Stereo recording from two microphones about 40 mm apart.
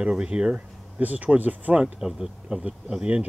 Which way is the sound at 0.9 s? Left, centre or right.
Right.